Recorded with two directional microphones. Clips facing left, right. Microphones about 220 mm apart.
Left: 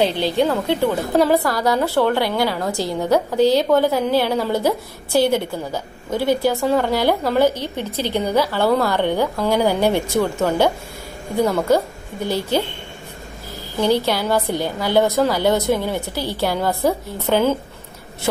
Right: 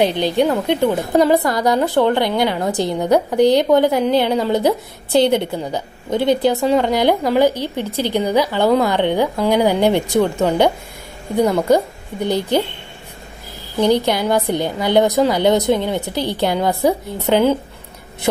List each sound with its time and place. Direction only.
0.0 s a woman's voice: 15° right (ahead or behind)
13.7 s a woman's voice: 15° right (ahead or behind)